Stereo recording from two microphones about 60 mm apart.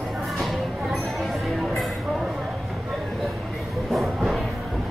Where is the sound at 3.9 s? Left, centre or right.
Centre.